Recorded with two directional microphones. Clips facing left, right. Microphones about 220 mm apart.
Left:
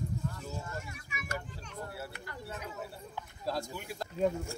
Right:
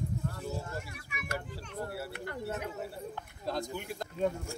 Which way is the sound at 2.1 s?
60° right (ahead or behind).